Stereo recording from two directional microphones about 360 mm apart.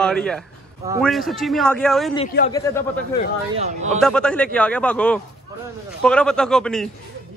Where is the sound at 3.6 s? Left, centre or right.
Centre.